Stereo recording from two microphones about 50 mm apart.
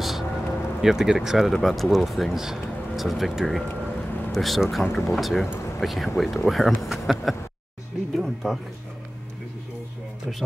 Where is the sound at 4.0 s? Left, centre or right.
Left.